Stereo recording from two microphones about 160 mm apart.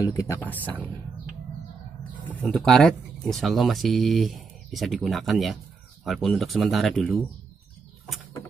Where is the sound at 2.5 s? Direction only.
Centre (ahead or behind).